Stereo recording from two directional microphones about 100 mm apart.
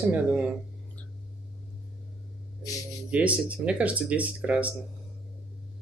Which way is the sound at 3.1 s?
10° right (ahead or behind).